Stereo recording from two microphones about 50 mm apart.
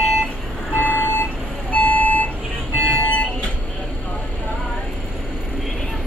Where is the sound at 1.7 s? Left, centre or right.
Left.